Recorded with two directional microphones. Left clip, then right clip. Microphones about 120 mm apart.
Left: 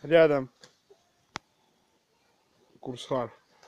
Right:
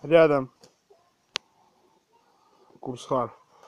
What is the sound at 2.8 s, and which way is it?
Speech, 10° right (ahead or behind).